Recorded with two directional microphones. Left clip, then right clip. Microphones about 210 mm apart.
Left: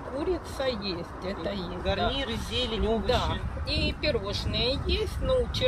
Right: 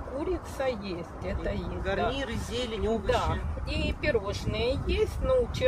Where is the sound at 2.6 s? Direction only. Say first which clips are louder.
Left 2 dB; 5° left (ahead or behind).